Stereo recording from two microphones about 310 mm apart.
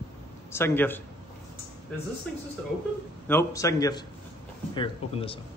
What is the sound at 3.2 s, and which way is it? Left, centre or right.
A man's voice, centre.